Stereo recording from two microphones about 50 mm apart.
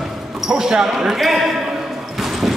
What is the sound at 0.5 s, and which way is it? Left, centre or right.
Speech, centre.